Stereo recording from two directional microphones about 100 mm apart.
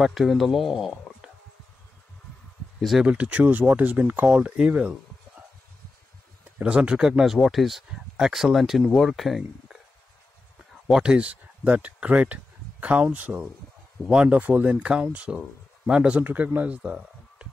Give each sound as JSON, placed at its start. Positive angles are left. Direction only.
{"t": 0.0, "sound": "speech", "side_deg": 0}
{"t": 2.8, "sound": "speech", "side_deg": 0}
{"t": 3.1, "sound": "speech", "side_deg": -10}
{"t": 6.6, "sound": "speech", "side_deg": -10}
{"t": 10.9, "sound": "a man's voice", "side_deg": -10}